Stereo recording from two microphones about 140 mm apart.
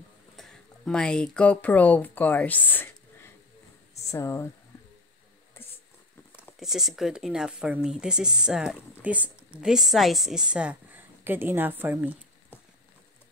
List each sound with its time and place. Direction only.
0.4 s speech: 5° left (ahead or behind); by 4.5 s 20° left (ahead or behind)
6.6 s speech: 5° right (ahead or behind)